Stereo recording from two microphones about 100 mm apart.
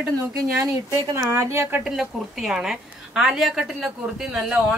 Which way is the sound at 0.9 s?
35° right (ahead or behind).